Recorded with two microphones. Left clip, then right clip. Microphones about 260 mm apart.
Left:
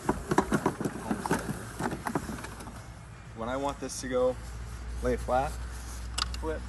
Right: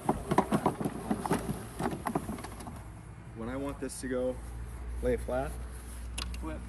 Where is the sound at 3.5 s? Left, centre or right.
Centre.